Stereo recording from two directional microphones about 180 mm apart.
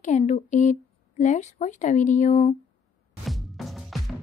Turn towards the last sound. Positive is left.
turn(degrees=0)  # may be behind; listen again after turning